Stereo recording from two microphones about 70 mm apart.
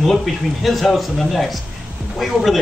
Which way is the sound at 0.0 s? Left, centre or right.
Centre.